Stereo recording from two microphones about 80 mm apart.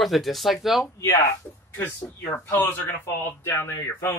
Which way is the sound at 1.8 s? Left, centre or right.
Left.